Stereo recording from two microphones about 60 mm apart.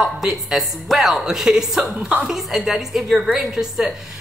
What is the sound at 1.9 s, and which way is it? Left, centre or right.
Speech, centre.